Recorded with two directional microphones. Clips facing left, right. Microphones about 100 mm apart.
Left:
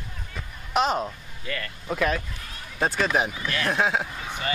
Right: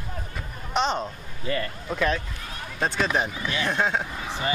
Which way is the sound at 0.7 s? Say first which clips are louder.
Left 2 dB; 5° left (ahead or behind).